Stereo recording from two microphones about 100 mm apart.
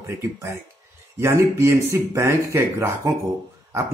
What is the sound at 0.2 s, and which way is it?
A man's voice, 25° right (ahead or behind).